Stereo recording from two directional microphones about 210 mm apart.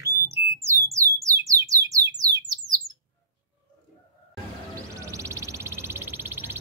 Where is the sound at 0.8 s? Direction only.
15° right (ahead or behind).